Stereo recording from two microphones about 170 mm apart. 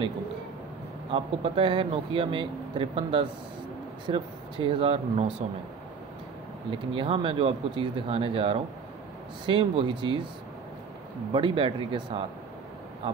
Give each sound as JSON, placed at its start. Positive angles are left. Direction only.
{"t": 1.1, "sound": "speech", "side_deg": -30}
{"t": 6.7, "sound": "speech", "side_deg": -30}
{"t": 11.3, "sound": "speech", "side_deg": -30}